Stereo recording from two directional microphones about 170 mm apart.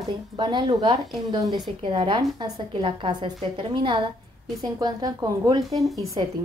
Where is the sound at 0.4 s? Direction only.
25° right (ahead or behind).